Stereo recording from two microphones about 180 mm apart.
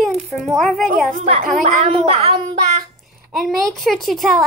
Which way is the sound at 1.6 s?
35° right (ahead or behind).